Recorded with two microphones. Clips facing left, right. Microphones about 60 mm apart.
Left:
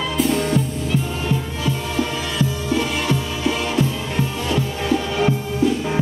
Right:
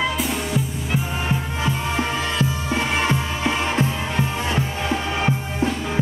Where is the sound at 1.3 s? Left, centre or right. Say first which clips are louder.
Even; right.